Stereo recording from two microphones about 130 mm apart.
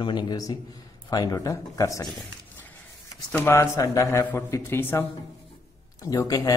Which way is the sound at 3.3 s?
20° left (ahead or behind).